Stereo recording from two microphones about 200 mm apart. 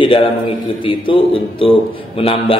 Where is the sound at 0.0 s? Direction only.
25° left (ahead or behind).